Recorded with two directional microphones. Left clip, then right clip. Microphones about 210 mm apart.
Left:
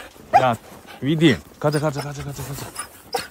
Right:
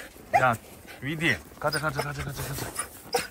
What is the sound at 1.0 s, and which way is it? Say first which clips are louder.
Speech: left 8 dB; 45° left (ahead or behind).